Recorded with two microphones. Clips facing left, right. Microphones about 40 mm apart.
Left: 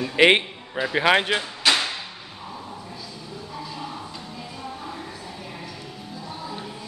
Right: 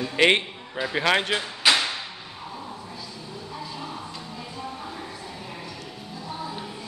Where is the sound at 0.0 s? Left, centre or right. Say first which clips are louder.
Left 3 dB; centre.